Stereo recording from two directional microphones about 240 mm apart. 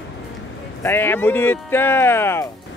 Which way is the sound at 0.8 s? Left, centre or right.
Centre.